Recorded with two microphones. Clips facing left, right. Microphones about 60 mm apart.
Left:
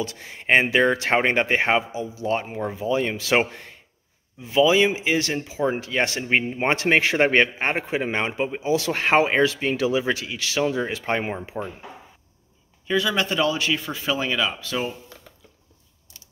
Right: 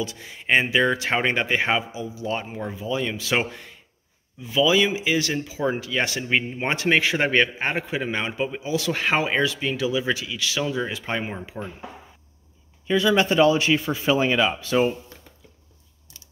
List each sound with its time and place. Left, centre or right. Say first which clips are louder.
0.0 s a man's voice: left 1 dB; left
5.8 s a man's voice: left 1 dB; left
11.6 s speech: left 3 dB; centre
12.8 s a man's voice: right 3 dB; centre; by 15.0 s right